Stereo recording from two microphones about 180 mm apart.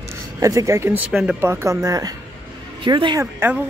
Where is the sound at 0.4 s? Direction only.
15° right (ahead or behind).